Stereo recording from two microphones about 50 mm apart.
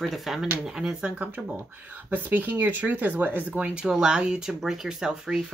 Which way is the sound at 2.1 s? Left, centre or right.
Right.